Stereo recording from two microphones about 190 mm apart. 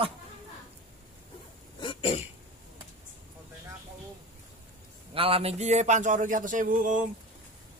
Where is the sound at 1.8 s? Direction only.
30° left (ahead or behind).